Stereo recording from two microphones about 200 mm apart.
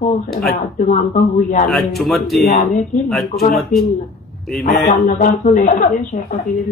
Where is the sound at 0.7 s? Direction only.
35° left (ahead or behind).